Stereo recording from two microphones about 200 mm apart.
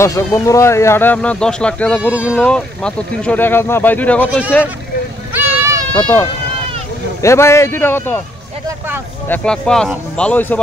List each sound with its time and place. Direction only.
0.0 s speech: 15° left (ahead or behind)
5.6 s a sound: 15° right (ahead or behind)
5.9 s speech: 10° left (ahead or behind)
9.3 s speech: 5° left (ahead or behind)